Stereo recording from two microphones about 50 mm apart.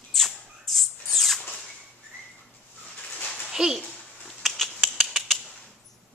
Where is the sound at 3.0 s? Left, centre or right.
Left.